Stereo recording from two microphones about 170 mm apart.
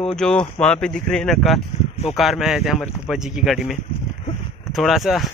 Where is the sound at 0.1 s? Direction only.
5° left (ahead or behind).